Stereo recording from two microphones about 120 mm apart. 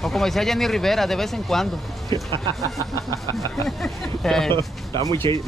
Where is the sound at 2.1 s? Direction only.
40° right (ahead or behind).